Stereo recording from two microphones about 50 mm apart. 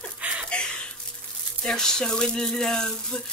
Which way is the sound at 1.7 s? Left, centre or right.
Centre.